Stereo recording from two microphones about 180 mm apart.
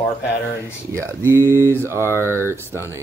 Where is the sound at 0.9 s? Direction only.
15° right (ahead or behind).